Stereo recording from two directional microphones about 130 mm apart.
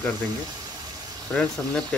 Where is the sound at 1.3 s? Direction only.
5° left (ahead or behind).